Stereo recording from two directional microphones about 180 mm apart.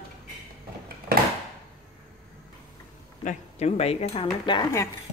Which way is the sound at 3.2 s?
35° left (ahead or behind).